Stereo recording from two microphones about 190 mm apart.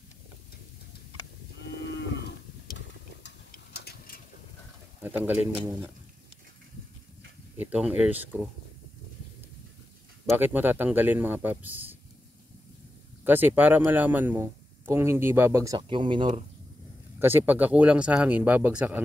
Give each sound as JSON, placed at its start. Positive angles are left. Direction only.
{"t": 1.6, "sound": "moo", "side_deg": 65}
{"t": 3.3, "sound": "a sound", "side_deg": 60}
{"t": 5.0, "sound": "a man's voice", "side_deg": -10}
{"t": 7.5, "sound": "a man's voice", "side_deg": -10}
{"t": 10.3, "sound": "a man's voice", "side_deg": -10}
{"t": 13.2, "sound": "a man's voice", "side_deg": -10}
{"t": 17.2, "sound": "a man's voice", "side_deg": -10}